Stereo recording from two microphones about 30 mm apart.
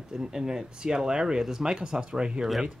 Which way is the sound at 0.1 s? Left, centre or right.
Centre.